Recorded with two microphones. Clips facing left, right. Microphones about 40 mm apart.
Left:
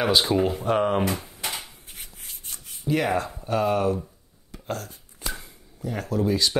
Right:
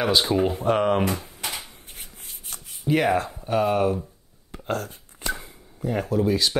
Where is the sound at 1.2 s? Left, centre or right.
Right.